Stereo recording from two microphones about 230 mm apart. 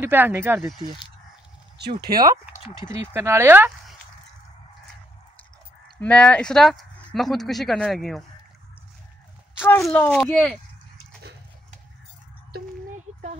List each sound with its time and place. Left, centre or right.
0.0 s speech: centre
1.8 s speech: right
3.1 s speech: centre
5.9 s speech: centre
9.6 s speech: centre
12.5 s a sound: right